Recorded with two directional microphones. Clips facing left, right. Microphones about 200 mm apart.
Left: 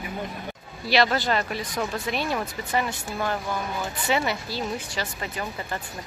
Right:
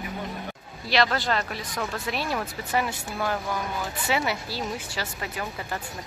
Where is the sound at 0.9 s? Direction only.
5° left (ahead or behind).